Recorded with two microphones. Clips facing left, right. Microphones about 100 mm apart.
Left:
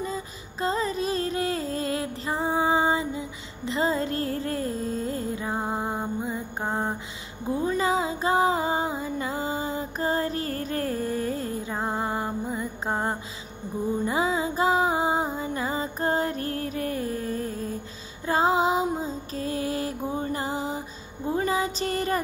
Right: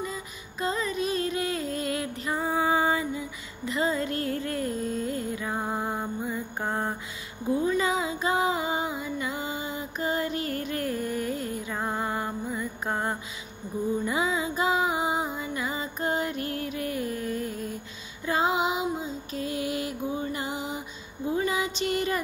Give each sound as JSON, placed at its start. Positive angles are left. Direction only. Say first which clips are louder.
{"t": 0.0, "sound": "music", "louder": "left 3 dB", "side_deg": 35}
{"t": 7.6, "sound": "music", "louder": "left 4 dB", "side_deg": 35}
{"t": 21.3, "sound": "a sound", "louder": "left 2 dB", "side_deg": 35}